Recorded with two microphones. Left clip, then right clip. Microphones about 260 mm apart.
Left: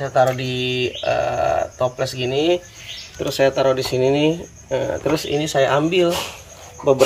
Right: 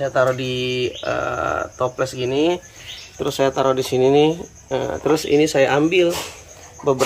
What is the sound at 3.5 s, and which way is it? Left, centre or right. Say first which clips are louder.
Speech: even; right.